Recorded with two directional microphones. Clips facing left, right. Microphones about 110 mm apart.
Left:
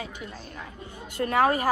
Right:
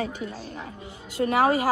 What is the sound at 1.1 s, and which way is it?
Speech, 15° right (ahead or behind).